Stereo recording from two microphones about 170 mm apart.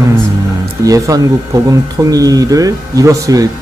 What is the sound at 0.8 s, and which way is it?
Speech, 20° right (ahead or behind).